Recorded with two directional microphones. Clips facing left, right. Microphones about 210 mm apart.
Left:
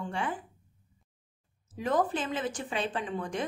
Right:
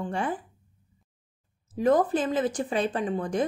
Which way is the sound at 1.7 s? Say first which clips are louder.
Right 6 dB; 40° right (ahead or behind).